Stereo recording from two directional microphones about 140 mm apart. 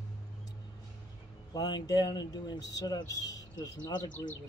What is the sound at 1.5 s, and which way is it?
Speech, 30° left (ahead or behind).